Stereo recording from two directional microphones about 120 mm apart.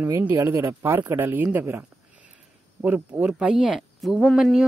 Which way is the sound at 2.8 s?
15° right (ahead or behind).